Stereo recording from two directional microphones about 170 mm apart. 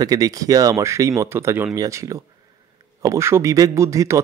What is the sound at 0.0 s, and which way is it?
A man's voice, 20° right (ahead or behind).